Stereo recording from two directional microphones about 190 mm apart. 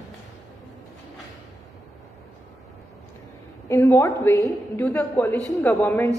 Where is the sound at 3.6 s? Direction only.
15° left (ahead or behind).